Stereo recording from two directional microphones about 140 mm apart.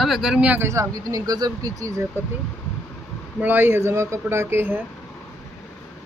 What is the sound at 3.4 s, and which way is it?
Speech, 15° right (ahead or behind).